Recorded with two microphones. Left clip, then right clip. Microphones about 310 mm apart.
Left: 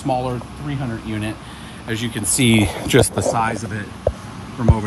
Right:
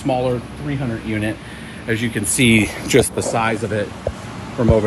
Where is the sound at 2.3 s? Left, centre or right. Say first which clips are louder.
Right 2 dB; left.